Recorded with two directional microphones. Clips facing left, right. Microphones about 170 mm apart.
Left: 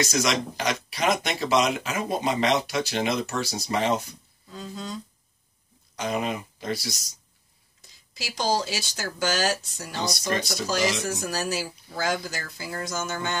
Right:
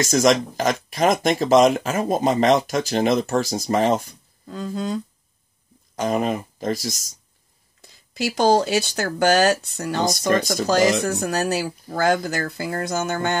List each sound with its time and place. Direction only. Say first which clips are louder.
0.0 s speech: right 7 dB; 45° right (ahead or behind)
5.9 s speech: right 6 dB; 45° right (ahead or behind)
8.1 s speech: right 9 dB; 60° right (ahead or behind)